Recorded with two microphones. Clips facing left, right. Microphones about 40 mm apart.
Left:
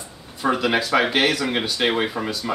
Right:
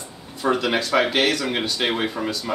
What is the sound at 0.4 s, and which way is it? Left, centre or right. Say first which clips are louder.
Speech: left 1 dB; centre.